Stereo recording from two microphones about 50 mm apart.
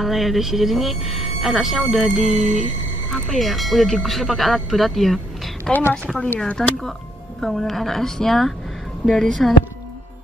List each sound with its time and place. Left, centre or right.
0.0 s speech: centre